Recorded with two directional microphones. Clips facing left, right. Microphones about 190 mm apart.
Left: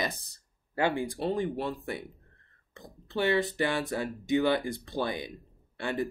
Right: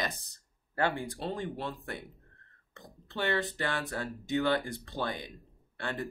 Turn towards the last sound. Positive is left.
turn(degrees=10)  # may be behind; listen again after turning